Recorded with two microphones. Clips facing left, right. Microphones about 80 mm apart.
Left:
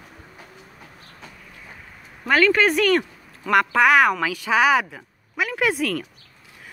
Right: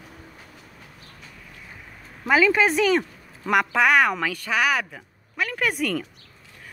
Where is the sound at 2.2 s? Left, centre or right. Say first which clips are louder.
Left 1 dB; centre.